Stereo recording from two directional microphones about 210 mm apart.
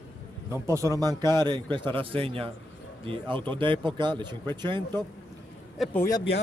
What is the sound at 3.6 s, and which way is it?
A man's voice, 25° right (ahead or behind).